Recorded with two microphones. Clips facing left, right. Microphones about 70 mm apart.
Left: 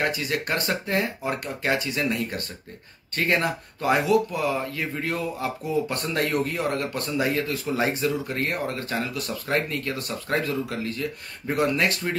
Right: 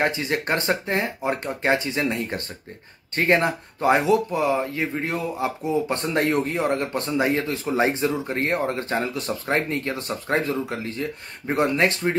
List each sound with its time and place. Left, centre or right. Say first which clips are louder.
0.0 s speech: right 3 dB; right